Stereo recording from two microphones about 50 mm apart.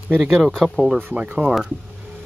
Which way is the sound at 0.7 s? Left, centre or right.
Centre.